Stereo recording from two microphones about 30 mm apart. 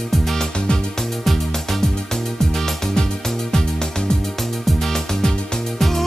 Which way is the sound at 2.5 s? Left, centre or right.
Centre.